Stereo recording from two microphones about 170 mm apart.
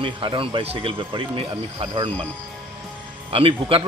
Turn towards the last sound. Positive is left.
turn(degrees=-35)  # may be behind; listen again after turning